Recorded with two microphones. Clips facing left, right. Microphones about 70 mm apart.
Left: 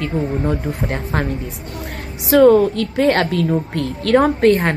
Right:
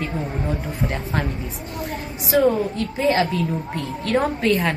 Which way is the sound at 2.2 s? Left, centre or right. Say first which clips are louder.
Left 8 dB; left.